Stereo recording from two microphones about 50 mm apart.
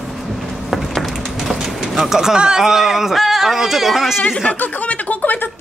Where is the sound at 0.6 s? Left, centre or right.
Centre.